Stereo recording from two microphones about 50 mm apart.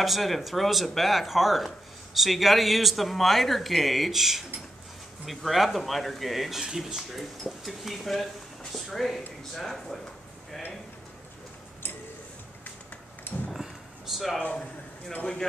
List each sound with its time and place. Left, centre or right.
0.0 s speech: centre
13.5 s a sound: centre
14.4 s a man's voice: left